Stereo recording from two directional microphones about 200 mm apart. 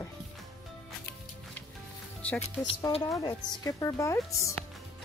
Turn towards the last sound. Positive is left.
turn(degrees=15)  # may be behind; listen again after turning